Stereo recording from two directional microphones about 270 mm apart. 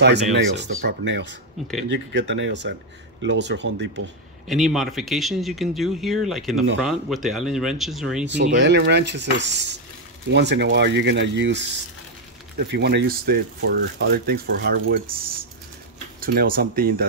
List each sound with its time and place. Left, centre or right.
0.0 s speech: right
4.5 s speech: centre
8.5 s speech: right
16.2 s speech: right